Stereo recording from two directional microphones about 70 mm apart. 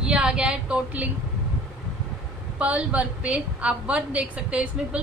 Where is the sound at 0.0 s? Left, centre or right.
Centre.